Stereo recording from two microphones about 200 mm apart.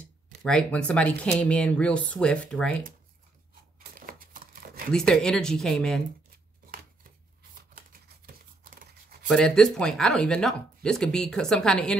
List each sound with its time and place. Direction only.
0.4 s speech: 5° left (ahead or behind)
3.9 s crumpling: 45° right (ahead or behind)
4.9 s speech: 5° left (ahead or behind)
7.7 s a sound: 45° right (ahead or behind)
9.3 s speech: 5° left (ahead or behind)